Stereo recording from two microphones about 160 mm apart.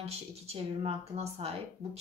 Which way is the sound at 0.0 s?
40° right (ahead or behind).